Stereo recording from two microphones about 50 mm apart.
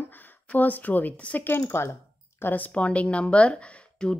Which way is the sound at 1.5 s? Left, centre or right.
Left.